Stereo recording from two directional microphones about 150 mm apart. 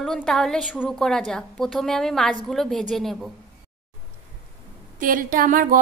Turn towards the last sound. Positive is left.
turn(degrees=-65)  # may be behind; listen again after turning